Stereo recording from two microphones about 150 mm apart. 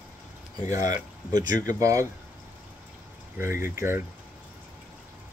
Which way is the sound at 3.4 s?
20° right (ahead or behind).